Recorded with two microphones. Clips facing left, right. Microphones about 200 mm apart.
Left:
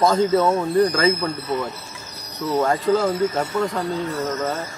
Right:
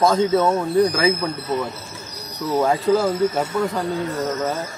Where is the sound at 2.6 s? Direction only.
5° right (ahead or behind).